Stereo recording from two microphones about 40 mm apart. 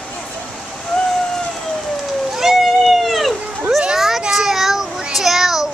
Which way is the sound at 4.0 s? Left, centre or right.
Centre.